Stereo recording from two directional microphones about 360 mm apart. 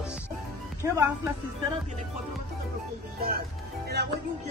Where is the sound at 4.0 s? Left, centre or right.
Right.